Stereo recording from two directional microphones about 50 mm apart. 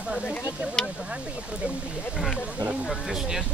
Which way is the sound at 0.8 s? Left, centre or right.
Centre.